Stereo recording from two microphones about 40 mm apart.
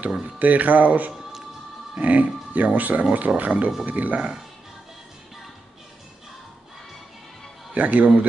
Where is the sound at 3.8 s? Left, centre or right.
Right.